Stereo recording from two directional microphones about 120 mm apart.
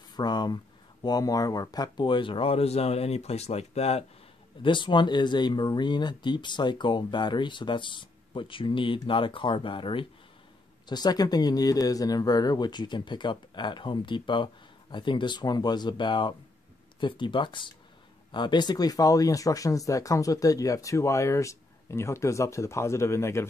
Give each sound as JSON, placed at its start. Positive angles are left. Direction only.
{"t": 0.1, "sound": "a sound", "side_deg": 35}
{"t": 1.0, "sound": "speech", "side_deg": 30}
{"t": 4.6, "sound": "speech", "side_deg": 40}
{"t": 10.9, "sound": "speech", "side_deg": 35}